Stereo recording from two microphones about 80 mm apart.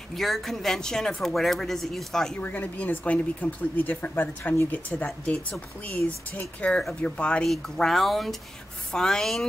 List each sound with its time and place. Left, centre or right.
0.1 s speech: centre
2.4 s speech: left
4.9 s speech: centre